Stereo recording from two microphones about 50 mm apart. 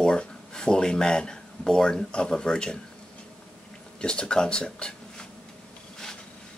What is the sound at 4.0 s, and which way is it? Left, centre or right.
Speech, centre.